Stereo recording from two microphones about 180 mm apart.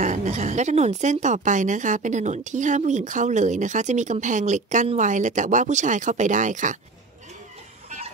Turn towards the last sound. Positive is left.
turn(degrees=-45)  # may be behind; listen again after turning